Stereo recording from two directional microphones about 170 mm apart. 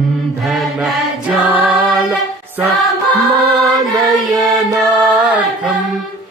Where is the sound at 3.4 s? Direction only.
20° right (ahead or behind).